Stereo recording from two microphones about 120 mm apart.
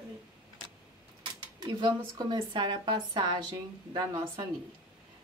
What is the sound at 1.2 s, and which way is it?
Speech, 40° right (ahead or behind).